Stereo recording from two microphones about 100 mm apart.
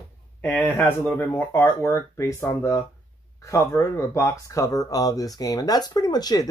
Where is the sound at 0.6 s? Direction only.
20° left (ahead or behind).